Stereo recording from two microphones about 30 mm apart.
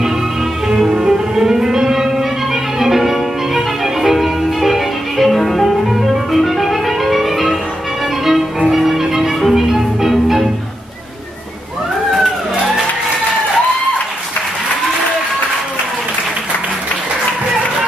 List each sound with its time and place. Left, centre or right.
0.7 s music: right; by 7.4 s centre
8.6 s music: centre
12.1 s a sound: centre